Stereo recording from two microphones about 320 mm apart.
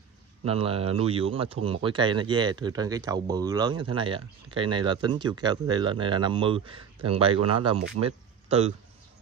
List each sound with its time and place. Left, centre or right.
0.4 s speech: centre